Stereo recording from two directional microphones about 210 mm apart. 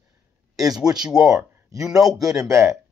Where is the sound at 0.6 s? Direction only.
15° right (ahead or behind).